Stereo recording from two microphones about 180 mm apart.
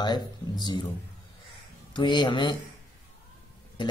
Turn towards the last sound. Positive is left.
turn(degrees=25)  # may be behind; listen again after turning